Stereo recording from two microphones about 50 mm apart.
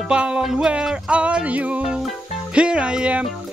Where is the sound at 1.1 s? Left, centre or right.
Right.